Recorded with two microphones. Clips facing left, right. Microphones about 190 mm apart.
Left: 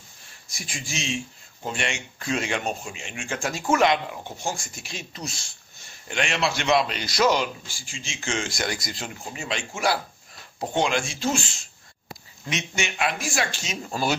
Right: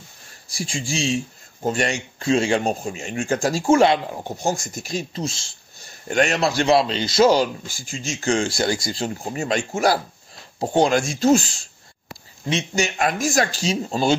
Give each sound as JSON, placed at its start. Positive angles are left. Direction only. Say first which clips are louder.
{"t": 0.5, "sound": "speech", "louder": "right 9 dB", "side_deg": -30}
{"t": 2.1, "sound": "speech", "louder": "right 9 dB", "side_deg": -30}
{"t": 5.2, "sound": "speech", "louder": "right 8 dB", "side_deg": -25}
{"t": 5.9, "sound": "speech", "louder": "right 8 dB", "side_deg": -40}
{"t": 7.6, "sound": "speech", "louder": "right 9 dB", "side_deg": -45}